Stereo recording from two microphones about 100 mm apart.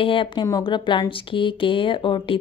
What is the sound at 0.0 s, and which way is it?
A woman's voice, 60° left (ahead or behind).